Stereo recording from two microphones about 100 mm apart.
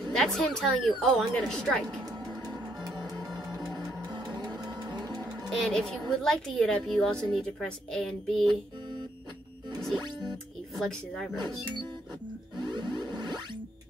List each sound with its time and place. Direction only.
0.0 s speech: 5° left (ahead or behind)
2.8 s music: 40° right (ahead or behind)
5.5 s speech: 5° left (ahead or behind)
9.9 s music: 45° right (ahead or behind)
10.7 s speech: 5° left (ahead or behind)
12.5 s music: 50° right (ahead or behind)